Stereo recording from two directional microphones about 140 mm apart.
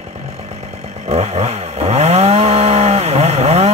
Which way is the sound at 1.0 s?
50° right (ahead or behind).